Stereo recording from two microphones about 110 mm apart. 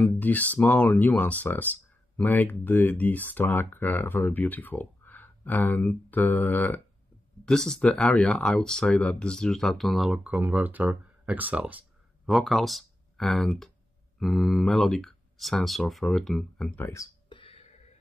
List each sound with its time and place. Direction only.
0.0 s speech: 15° left (ahead or behind)
7.4 s speech: 5° left (ahead or behind); by 11.8 s 15° right (ahead or behind)
12.3 s speech: centre (ahead or behind)
16.7 s speech: 25° left (ahead or behind)
17.3 s a sound: 50° left (ahead or behind)
17.6 s a sound: 90° left